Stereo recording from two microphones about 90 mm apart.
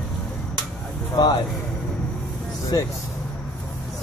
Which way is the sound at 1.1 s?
50° left (ahead or behind).